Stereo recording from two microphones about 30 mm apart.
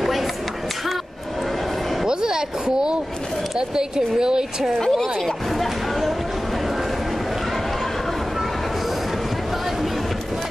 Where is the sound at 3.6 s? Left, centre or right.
Right.